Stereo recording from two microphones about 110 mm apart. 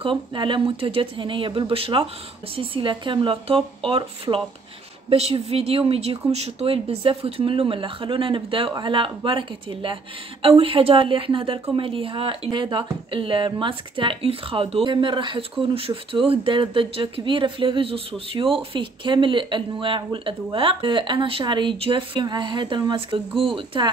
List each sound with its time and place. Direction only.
0.0 s speech: 50° right (ahead or behind)
5.1 s speech: 65° right (ahead or behind); by 9.9 s 50° right (ahead or behind)
10.6 s speech: 60° right (ahead or behind)
12.4 s speech: 45° right (ahead or behind)